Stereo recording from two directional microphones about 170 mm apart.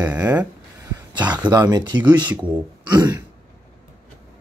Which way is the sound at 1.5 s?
25° right (ahead or behind).